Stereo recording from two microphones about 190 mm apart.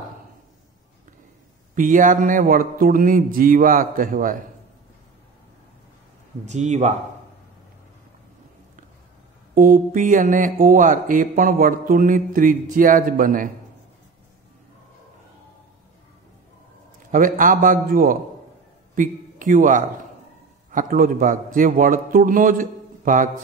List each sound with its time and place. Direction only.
1.8 s speech: 45° right (ahead or behind)
6.4 s speech: 40° right (ahead or behind)
9.6 s speech: 45° right (ahead or behind)
17.1 s a man's voice: 45° right (ahead or behind)